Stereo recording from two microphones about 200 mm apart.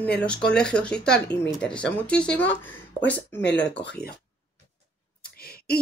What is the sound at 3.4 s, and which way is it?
Speech, 60° left (ahead or behind).